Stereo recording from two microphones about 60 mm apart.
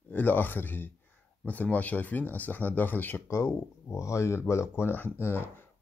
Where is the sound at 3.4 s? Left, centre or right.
Left.